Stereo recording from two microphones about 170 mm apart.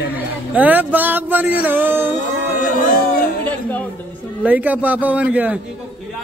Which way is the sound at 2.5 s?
50° left (ahead or behind).